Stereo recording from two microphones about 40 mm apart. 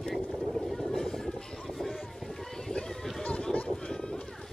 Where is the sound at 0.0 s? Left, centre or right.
Centre.